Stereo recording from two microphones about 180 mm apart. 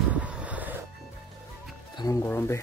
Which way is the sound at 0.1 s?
5° right (ahead or behind).